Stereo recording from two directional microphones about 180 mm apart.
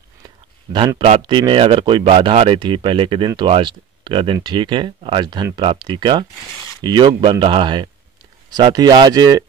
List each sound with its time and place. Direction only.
1.0 s speech: 30° right (ahead or behind)